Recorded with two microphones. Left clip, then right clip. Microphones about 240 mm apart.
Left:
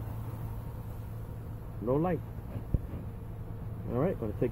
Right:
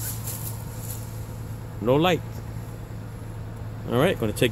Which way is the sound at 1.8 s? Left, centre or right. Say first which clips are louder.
Right 10 dB; right.